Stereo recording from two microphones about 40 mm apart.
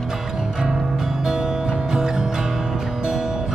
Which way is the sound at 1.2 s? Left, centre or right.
Centre.